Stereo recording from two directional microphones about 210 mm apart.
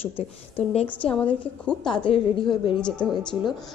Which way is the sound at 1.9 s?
25° left (ahead or behind).